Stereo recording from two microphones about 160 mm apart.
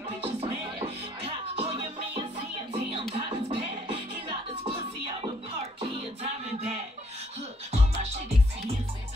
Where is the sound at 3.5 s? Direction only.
35° right (ahead or behind).